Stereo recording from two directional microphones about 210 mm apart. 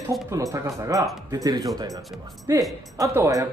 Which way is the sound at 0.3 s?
15° right (ahead or behind).